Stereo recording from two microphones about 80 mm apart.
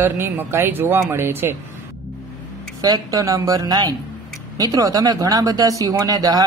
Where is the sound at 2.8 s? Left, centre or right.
Right.